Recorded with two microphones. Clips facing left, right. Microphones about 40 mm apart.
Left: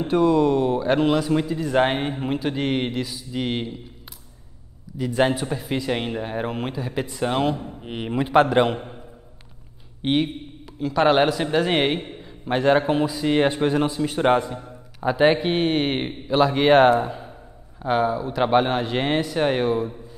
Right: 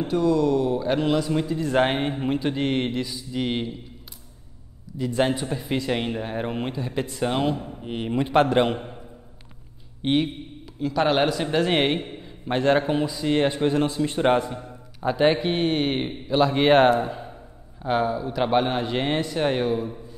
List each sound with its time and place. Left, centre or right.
0.1 s a man's voice: left
1.7 s speech: centre
4.9 s speech: left
10.0 s speech: centre
14.1 s speech: centre
16.5 s speech: centre
17.8 s speech: centre